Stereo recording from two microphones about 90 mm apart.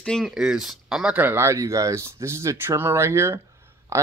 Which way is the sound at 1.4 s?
35° right (ahead or behind).